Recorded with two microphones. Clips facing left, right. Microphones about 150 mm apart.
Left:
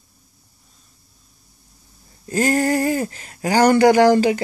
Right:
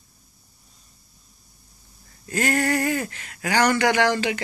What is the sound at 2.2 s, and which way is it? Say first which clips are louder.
Speech: left 5 dB; 35° left (ahead or behind).